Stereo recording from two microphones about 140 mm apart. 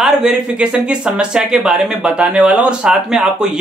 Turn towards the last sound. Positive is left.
turn(degrees=-5)  # may be behind; listen again after turning